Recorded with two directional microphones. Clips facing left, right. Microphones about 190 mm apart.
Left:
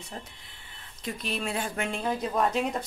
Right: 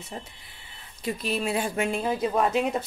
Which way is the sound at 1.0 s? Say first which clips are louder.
Right 5 dB; 5° right (ahead or behind).